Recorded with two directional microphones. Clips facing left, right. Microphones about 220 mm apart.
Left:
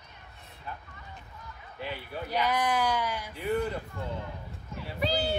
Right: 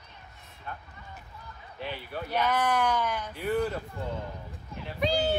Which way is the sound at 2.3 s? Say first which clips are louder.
Right 1 dB; 10° left (ahead or behind).